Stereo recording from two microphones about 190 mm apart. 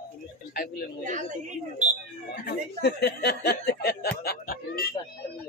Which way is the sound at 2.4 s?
55° left (ahead or behind).